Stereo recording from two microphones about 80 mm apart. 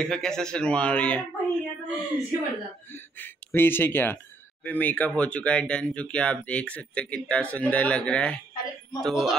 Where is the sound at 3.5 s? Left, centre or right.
Left.